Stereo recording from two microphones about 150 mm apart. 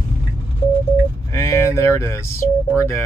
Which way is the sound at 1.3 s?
20° left (ahead or behind).